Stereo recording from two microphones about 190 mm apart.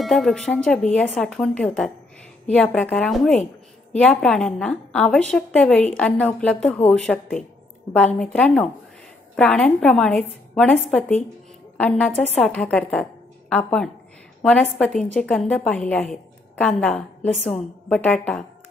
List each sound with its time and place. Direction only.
0.0 s a woman's voice: centre (ahead or behind)